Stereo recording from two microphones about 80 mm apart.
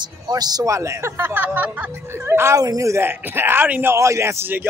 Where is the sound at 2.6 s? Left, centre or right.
Right.